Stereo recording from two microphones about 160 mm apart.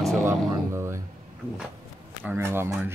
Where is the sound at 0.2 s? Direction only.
15° right (ahead or behind).